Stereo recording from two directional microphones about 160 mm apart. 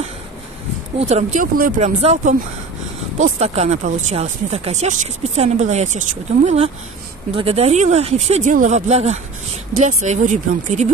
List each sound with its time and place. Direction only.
0.9 s speech: 45° right (ahead or behind)
2.0 s speech: 40° right (ahead or behind)